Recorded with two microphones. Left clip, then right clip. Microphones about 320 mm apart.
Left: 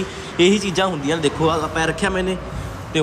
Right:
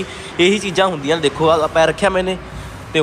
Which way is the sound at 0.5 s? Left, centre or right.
Left.